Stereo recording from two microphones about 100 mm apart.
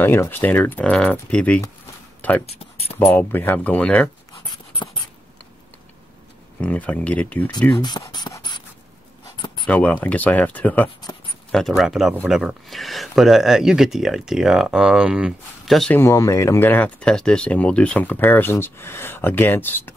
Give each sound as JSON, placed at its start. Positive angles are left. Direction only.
{"t": 0.0, "sound": "speech", "side_deg": 20}
{"t": 4.5, "sound": "dog", "side_deg": 50}
{"t": 6.6, "sound": "speech", "side_deg": 15}
{"t": 8.0, "sound": "speech", "side_deg": 40}
{"t": 8.4, "sound": "writing", "side_deg": 50}
{"t": 9.7, "sound": "speech", "side_deg": 15}
{"t": 11.1, "sound": "a sound", "side_deg": 35}
{"t": 11.5, "sound": "speech", "side_deg": 0}
{"t": 15.9, "sound": "speech", "side_deg": 30}